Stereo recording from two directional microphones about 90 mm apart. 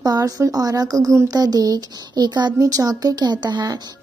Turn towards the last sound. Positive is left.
turn(degrees=-40)  # may be behind; listen again after turning